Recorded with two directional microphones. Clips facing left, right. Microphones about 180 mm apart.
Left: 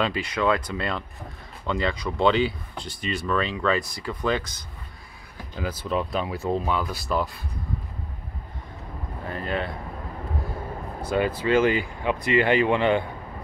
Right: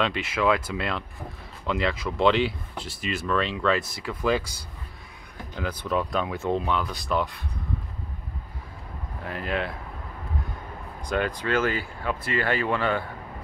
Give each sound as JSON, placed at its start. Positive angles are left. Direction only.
{"t": 0.0, "sound": "speech", "side_deg": 0}
{"t": 5.6, "sound": "speech", "side_deg": 5}
{"t": 9.2, "sound": "speech", "side_deg": 0}
{"t": 11.0, "sound": "speech", "side_deg": 5}